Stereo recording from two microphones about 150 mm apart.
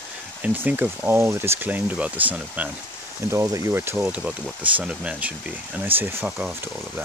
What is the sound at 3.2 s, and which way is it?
Speech, 20° right (ahead or behind).